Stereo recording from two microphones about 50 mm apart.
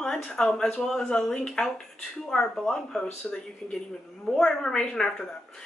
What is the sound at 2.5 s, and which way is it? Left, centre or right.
Speech, centre.